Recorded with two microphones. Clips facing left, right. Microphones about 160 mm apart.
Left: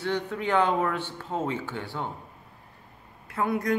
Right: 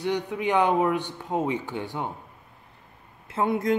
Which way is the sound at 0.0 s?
15° right (ahead or behind).